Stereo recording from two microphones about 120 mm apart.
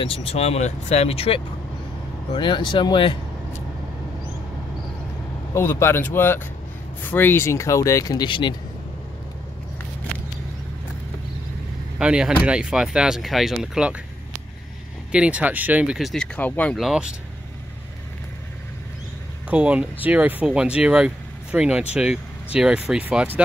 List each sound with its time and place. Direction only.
0.0 s speech: 50° left (ahead or behind)
2.3 s speech: 45° left (ahead or behind)
5.5 s speech: 20° left (ahead or behind); by 8.5 s 40° left (ahead or behind)
12.0 s speech: 5° right (ahead or behind)
15.0 s speech: 10° right (ahead or behind)
16.3 s speech: 15° left (ahead or behind)
16.7 s speech: 5° right (ahead or behind)
19.5 s speech: 10° right (ahead or behind)